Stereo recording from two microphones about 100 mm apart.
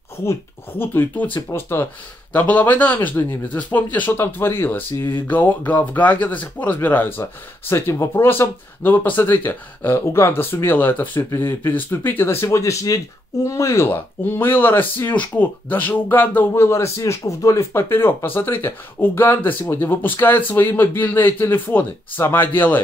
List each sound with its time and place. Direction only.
0.2 s speech: 25° left (ahead or behind)